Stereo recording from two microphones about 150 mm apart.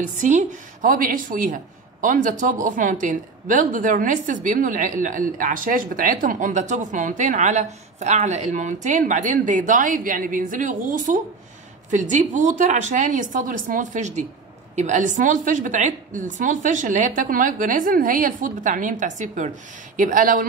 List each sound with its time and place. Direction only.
0.0 s speech: 55° right (ahead or behind)